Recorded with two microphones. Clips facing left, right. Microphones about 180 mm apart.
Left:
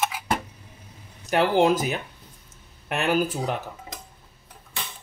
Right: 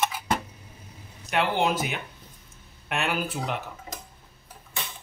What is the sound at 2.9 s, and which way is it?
Speech, 40° left (ahead or behind).